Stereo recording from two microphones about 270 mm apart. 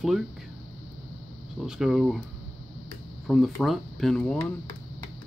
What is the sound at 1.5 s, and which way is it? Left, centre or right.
Speech, centre.